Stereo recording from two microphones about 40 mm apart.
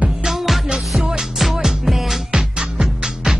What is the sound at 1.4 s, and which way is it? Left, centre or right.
Music, centre.